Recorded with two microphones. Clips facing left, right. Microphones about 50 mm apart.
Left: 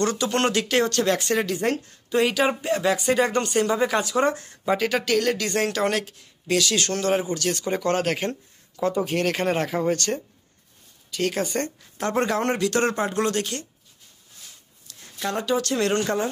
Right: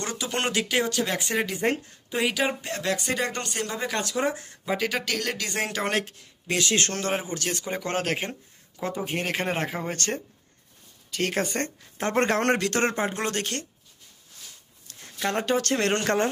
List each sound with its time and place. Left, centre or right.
0.0 s speech: centre
2.1 s speech: centre; by 12.7 s right
12.7 s speech: right
13.3 s speech: right
14.9 s speech: right